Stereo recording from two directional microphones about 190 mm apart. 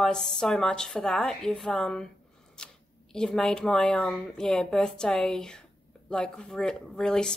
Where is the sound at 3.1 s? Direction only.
5° left (ahead or behind).